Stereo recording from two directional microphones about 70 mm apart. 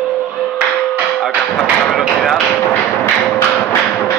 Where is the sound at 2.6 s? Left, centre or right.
Left.